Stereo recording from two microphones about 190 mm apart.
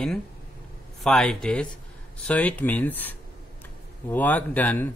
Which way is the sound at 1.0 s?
Centre (ahead or behind).